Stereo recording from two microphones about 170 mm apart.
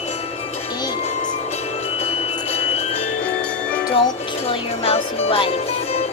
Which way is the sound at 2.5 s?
35° left (ahead or behind).